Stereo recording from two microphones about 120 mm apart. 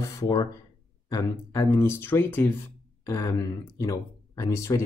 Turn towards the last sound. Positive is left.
turn(degrees=25)  # may be behind; listen again after turning